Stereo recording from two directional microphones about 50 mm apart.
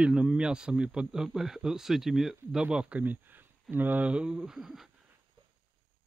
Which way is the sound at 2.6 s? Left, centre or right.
Right.